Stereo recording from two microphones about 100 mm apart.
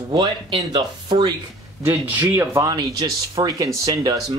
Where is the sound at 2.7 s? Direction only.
40° right (ahead or behind).